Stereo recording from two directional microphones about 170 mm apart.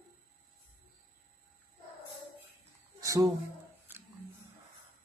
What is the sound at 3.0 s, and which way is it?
Speech, 20° right (ahead or behind).